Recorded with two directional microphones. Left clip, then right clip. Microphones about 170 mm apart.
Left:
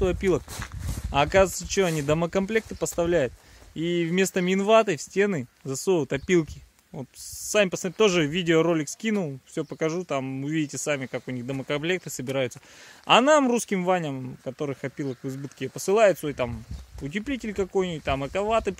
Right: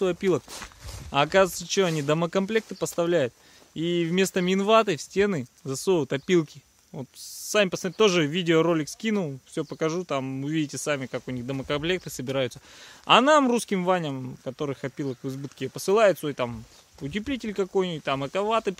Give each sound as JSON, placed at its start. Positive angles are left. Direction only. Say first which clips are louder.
{"t": 0.0, "sound": "speech", "louder": "even", "side_deg": 5}
{"t": 0.5, "sound": "walk", "louder": "left 2 dB", "side_deg": 45}
{"t": 1.1, "sound": "speech", "louder": "even", "side_deg": 0}